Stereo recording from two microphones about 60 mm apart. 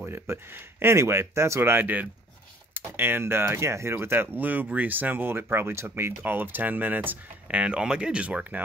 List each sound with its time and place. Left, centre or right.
0.0 s speech: right
1.6 s speech: right
7.5 s speech: centre